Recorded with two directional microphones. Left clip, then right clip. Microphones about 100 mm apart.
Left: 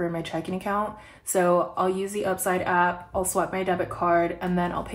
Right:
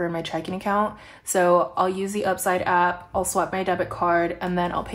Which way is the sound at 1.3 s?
25° right (ahead or behind).